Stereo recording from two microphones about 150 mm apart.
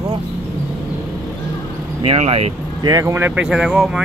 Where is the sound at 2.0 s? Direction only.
45° right (ahead or behind).